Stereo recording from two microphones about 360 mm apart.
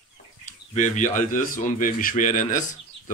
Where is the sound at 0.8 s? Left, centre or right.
Left.